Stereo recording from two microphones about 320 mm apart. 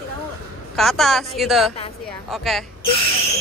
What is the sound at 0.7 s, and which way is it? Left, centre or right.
Speech, centre.